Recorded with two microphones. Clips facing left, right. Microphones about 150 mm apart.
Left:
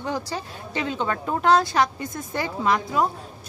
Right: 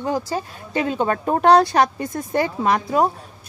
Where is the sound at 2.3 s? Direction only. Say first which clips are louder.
Right 4 dB; 50° right (ahead or behind).